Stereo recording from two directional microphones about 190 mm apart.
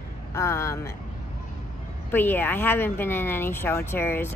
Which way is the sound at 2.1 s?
10° left (ahead or behind).